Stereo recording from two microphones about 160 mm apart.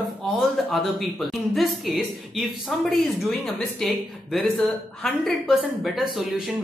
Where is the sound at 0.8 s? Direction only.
Centre (ahead or behind).